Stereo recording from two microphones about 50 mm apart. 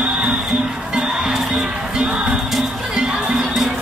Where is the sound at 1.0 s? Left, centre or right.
Centre.